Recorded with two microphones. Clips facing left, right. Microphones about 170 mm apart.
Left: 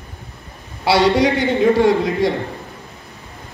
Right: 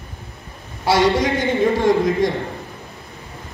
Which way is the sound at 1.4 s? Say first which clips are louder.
Left 3 dB; 45° right (ahead or behind).